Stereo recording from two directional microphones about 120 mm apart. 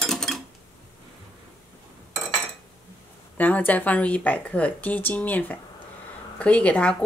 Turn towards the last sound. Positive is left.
turn(degrees=10)  # may be behind; listen again after turning